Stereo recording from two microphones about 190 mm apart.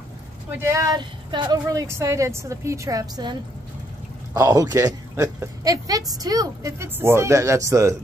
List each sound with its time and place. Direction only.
0.6 s speech: 15° right (ahead or behind)